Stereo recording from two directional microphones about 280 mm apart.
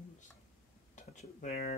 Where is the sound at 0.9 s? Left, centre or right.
Left.